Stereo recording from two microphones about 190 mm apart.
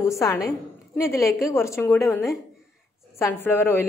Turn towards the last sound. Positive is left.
turn(degrees=10)  # may be behind; listen again after turning